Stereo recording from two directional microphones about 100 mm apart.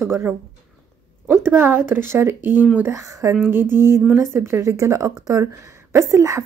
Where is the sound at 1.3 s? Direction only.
20° right (ahead or behind).